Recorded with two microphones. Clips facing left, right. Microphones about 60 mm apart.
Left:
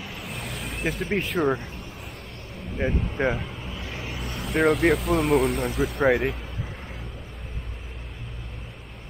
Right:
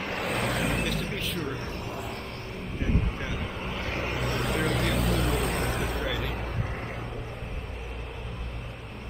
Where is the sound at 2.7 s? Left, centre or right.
Left.